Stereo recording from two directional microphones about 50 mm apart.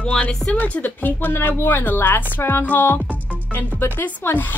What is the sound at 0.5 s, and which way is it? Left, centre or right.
Speech, left.